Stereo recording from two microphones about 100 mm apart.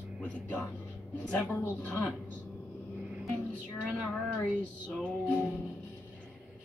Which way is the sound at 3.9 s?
5° left (ahead or behind).